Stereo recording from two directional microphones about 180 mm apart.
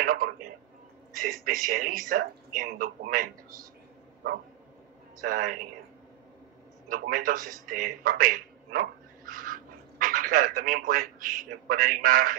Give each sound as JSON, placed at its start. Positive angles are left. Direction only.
{"t": 0.0, "sound": "a man's voice", "side_deg": -50}
{"t": 5.2, "sound": "speech", "side_deg": -50}
{"t": 6.9, "sound": "a man's voice", "side_deg": -50}